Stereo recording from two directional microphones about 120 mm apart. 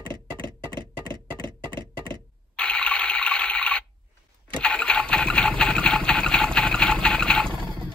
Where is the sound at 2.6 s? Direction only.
10° left (ahead or behind).